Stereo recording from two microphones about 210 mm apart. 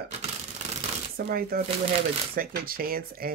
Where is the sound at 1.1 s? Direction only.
45° right (ahead or behind).